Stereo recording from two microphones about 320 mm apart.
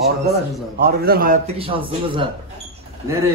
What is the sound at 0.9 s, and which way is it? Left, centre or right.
A man's voice, right.